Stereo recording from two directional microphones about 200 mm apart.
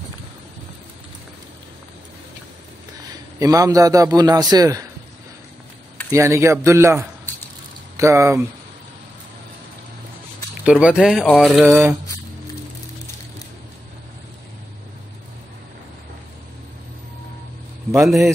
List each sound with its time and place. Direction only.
3.3 s a man's voice: 15° right (ahead or behind)
6.0 s a man's voice: 15° right (ahead or behind)
10.6 s speech: 5° right (ahead or behind)
11.6 s a man's voice: 15° right (ahead or behind)
18.0 s speech: centre (ahead or behind)